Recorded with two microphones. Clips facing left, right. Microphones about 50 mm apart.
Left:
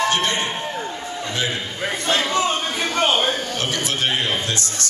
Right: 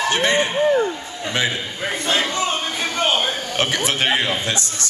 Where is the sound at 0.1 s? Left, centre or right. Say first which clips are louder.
Right 3 dB; right.